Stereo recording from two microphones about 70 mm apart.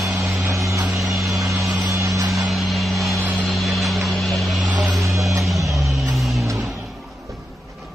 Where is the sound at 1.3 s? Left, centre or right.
Right.